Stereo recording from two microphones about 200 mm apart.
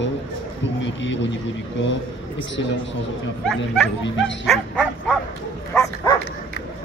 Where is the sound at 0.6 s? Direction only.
65° left (ahead or behind).